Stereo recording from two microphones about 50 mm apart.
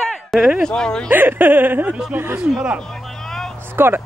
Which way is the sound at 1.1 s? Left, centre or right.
Right.